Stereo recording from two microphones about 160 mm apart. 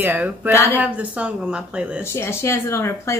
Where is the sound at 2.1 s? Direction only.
15° left (ahead or behind).